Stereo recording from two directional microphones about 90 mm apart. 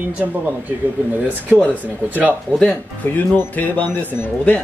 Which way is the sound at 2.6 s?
20° left (ahead or behind).